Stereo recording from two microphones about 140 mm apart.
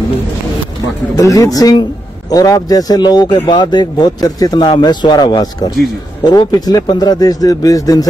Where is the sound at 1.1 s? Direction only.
25° left (ahead or behind).